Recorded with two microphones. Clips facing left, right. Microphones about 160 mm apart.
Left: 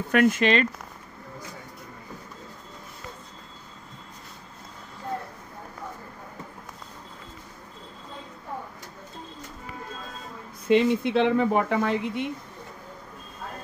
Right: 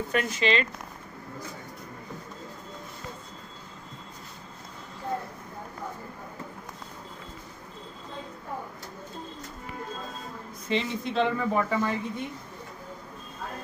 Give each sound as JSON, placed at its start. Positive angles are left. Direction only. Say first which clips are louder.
{"t": 0.1, "sound": "speech", "louder": "left 7 dB", "side_deg": 55}
{"t": 10.8, "sound": "speech", "louder": "left 6 dB", "side_deg": 65}